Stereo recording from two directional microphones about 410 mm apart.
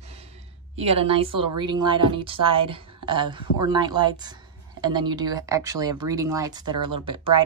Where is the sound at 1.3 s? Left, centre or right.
Right.